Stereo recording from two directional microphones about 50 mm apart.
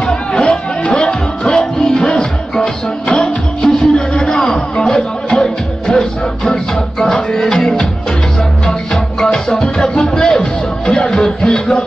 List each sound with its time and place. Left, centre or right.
0.0 s chatter: centre
0.8 s music: centre